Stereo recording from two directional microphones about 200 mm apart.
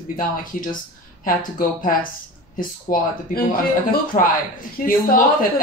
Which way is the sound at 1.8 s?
45° left (ahead or behind).